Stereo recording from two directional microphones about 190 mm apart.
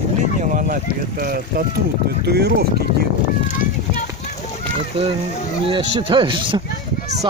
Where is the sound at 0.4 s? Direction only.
45° right (ahead or behind).